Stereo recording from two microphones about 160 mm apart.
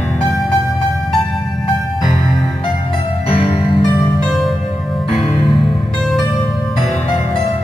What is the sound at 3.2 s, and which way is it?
Music, 35° left (ahead or behind).